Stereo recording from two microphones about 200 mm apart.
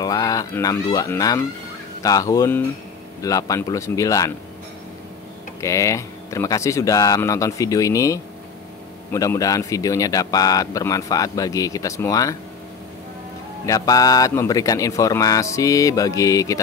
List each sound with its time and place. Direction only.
0.0 s speech: 20° left (ahead or behind)
5.6 s speech: 15° left (ahead or behind)
13.7 s speech: 20° left (ahead or behind)